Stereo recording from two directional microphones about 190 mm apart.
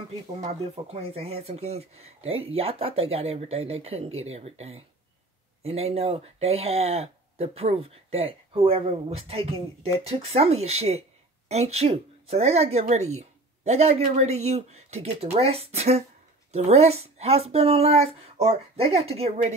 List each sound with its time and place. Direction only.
0.4 s speech: 30° right (ahead or behind)